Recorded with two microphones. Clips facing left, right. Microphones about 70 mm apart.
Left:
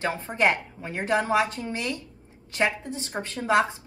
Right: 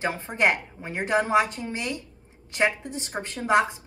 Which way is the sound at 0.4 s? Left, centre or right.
Right.